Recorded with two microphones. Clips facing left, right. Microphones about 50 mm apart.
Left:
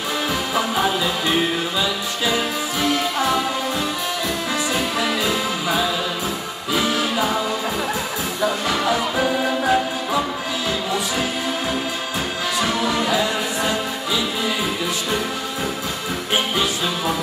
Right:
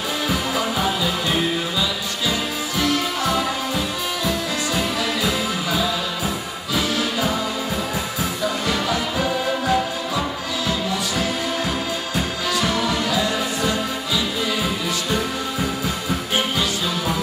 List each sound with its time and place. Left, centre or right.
2.8 s music: left
4.7 s music: centre
8.6 s music: centre
12.5 s music: centre